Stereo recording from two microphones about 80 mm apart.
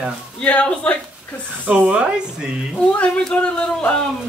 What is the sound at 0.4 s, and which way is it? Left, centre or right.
Speech, centre.